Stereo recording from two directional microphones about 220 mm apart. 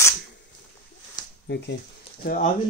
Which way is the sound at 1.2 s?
20° left (ahead or behind).